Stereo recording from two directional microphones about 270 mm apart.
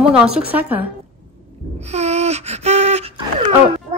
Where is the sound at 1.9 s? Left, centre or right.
Right.